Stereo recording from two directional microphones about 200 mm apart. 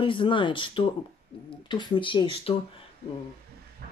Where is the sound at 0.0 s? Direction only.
25° left (ahead or behind).